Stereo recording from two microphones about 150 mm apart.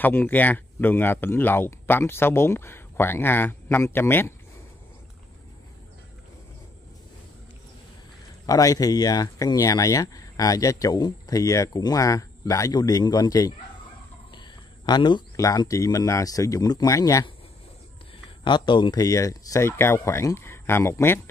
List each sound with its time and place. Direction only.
0.0 s speech: 10° left (ahead or behind)
8.5 s speech: 25° left (ahead or behind)
18.4 s speech: 30° left (ahead or behind)